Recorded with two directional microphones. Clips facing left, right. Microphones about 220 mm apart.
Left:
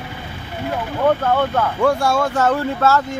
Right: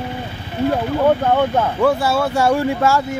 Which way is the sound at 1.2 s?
20° right (ahead or behind).